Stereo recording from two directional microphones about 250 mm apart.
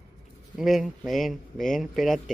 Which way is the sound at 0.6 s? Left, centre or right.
Centre.